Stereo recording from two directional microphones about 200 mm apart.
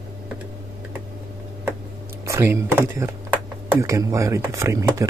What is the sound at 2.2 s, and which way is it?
Speech, 15° right (ahead or behind).